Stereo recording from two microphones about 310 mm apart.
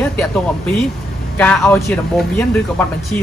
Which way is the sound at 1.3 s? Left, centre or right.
Centre.